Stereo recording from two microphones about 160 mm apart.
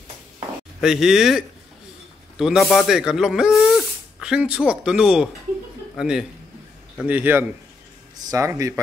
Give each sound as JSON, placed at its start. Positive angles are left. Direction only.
{"t": 0.7, "sound": "a man's voice", "side_deg": -5}